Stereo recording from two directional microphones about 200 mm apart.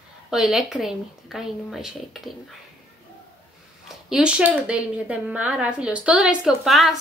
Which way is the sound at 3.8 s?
5° right (ahead or behind).